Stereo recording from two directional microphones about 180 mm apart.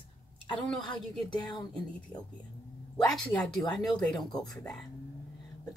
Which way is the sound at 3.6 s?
Centre (ahead or behind).